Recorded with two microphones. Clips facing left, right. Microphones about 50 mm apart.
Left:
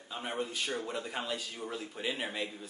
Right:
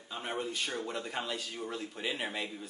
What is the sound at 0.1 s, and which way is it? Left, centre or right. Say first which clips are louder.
Speech: even; centre.